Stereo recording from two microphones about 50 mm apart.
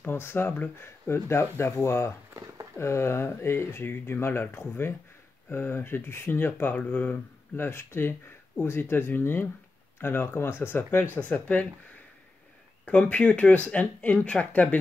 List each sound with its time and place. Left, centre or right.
0.0 s speech: left
7.5 s speech: left
11.1 s speech: left
12.8 s speech: left